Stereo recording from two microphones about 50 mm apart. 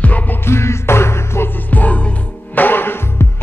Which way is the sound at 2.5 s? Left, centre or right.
Left.